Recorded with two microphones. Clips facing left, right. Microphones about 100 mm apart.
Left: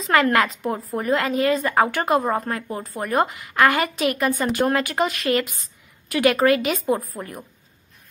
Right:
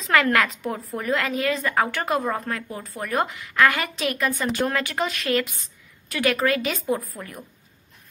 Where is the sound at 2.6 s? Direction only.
40° left (ahead or behind).